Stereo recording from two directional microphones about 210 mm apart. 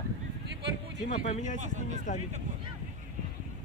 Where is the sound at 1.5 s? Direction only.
35° right (ahead or behind).